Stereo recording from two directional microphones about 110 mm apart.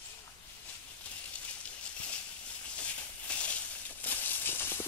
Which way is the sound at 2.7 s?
10° left (ahead or behind).